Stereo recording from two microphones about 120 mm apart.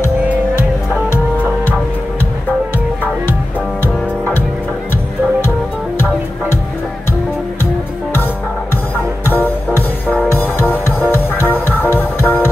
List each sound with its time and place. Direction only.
9.2 s music: 15° left (ahead or behind)